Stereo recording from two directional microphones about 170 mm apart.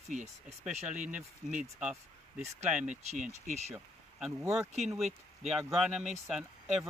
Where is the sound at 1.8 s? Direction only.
5° right (ahead or behind).